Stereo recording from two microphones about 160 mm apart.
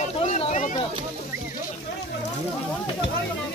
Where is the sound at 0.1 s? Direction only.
40° left (ahead or behind).